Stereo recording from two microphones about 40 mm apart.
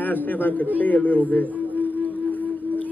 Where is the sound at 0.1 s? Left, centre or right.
Left.